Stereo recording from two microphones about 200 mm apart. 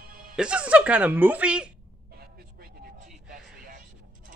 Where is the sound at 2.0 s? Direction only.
50° right (ahead or behind).